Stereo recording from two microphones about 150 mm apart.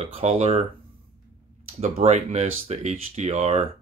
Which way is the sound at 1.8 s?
50° right (ahead or behind).